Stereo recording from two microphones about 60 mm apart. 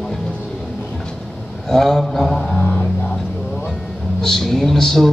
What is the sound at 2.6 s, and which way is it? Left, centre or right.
Music, left.